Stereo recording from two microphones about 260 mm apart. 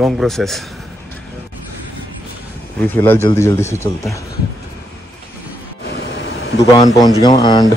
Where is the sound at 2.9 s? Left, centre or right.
Centre.